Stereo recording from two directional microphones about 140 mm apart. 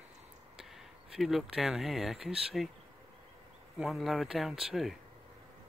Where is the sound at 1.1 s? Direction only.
Centre (ahead or behind).